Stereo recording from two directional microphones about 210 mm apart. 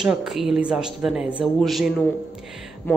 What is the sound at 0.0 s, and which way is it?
Speech, centre (ahead or behind).